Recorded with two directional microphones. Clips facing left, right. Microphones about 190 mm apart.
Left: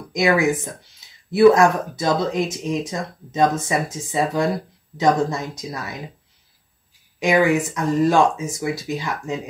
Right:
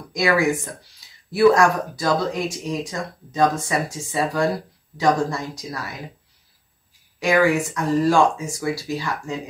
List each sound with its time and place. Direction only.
0.1 s speech: 20° left (ahead or behind)
7.2 s speech: 20° left (ahead or behind)